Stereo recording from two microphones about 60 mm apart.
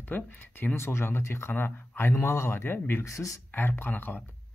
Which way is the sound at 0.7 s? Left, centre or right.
Left.